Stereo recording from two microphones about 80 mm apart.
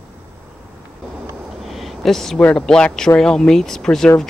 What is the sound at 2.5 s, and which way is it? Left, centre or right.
Speech, centre.